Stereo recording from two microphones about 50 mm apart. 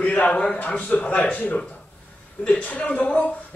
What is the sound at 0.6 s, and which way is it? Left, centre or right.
A man's voice, left.